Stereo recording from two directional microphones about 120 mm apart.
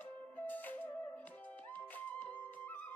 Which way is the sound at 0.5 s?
15° left (ahead or behind).